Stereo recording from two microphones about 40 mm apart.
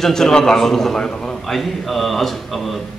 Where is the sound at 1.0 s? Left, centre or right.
Centre.